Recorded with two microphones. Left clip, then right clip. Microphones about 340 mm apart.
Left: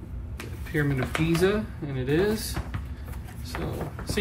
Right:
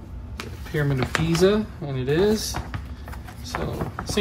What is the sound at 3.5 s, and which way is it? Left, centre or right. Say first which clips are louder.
Speech: right 5 dB; right.